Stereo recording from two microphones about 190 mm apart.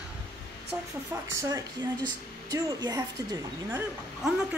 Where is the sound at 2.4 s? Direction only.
20° right (ahead or behind).